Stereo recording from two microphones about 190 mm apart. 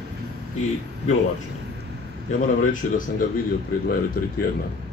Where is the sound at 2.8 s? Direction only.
45° left (ahead or behind).